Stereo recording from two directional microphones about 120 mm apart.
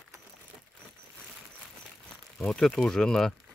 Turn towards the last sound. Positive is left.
turn(degrees=5)  # may be behind; listen again after turning